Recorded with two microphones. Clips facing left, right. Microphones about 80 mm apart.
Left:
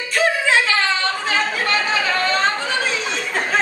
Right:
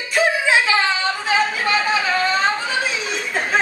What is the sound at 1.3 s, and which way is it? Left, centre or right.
Chatter, centre.